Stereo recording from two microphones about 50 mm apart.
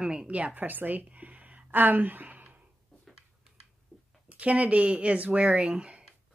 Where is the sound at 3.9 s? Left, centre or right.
Centre.